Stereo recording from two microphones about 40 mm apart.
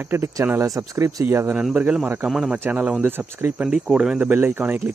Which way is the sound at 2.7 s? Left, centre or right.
Right.